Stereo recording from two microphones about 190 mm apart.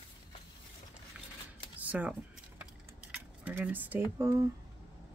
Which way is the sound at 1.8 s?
10° right (ahead or behind).